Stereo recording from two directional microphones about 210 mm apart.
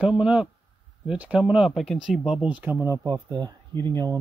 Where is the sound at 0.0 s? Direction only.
5° right (ahead or behind).